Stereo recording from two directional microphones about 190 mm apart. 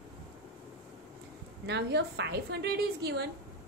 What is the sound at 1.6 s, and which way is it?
A woman's voice, 65° right (ahead or behind).